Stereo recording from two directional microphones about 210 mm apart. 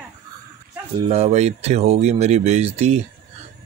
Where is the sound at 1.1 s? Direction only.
30° right (ahead or behind).